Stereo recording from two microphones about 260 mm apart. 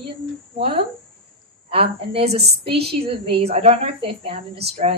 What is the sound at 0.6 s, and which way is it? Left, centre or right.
Speech, right.